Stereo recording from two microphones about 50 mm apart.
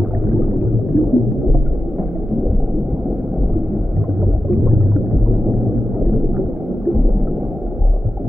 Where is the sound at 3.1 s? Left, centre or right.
Centre.